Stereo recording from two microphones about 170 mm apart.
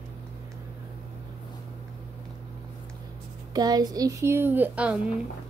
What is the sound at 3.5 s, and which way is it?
A woman's voice, 25° right (ahead or behind).